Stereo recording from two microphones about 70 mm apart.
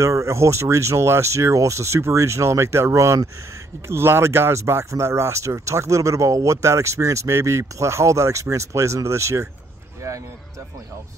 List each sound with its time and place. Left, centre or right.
0.0 s speech: right